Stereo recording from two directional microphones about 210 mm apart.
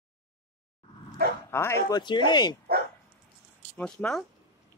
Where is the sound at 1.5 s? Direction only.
10° left (ahead or behind).